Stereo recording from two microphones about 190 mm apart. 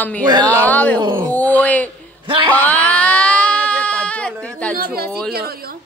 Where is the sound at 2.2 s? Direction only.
25° right (ahead or behind).